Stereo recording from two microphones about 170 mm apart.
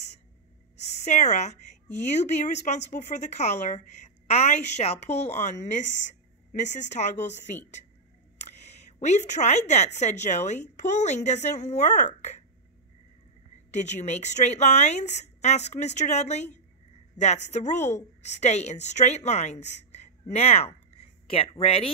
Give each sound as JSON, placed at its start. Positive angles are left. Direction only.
{"t": 0.8, "sound": "a woman's voice", "side_deg": 45}
{"t": 6.9, "sound": "a woman's voice", "side_deg": 45}
{"t": 8.4, "sound": "speech", "side_deg": 40}
{"t": 12.2, "sound": "throat clearing", "side_deg": 40}
{"t": 13.7, "sound": "a woman's voice", "side_deg": 45}